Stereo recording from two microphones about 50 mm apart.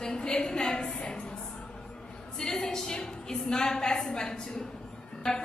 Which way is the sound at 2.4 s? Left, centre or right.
Centre.